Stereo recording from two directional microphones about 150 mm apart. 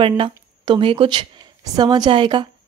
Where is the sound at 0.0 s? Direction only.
35° right (ahead or behind).